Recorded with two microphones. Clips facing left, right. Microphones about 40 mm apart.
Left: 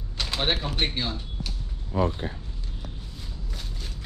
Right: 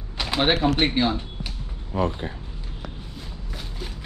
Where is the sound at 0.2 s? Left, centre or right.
Centre.